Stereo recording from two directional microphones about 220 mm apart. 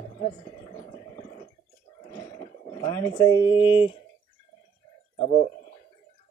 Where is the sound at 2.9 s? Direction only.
15° left (ahead or behind).